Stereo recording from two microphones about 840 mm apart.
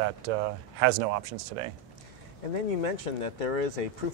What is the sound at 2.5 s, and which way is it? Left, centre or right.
Speech, left.